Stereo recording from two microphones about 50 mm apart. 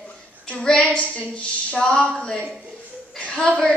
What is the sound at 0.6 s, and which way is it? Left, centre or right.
Speech, centre.